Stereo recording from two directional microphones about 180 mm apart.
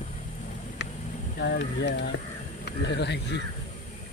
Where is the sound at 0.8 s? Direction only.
80° left.